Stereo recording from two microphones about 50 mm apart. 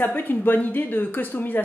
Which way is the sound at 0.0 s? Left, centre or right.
Left.